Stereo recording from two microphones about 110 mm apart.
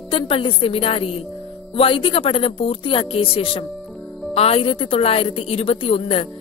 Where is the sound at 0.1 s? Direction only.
55° left (ahead or behind).